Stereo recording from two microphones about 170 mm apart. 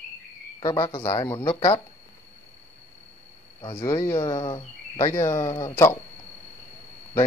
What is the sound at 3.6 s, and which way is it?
Speech, 30° left (ahead or behind).